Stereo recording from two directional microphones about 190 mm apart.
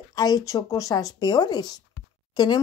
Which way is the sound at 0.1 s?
20° left (ahead or behind).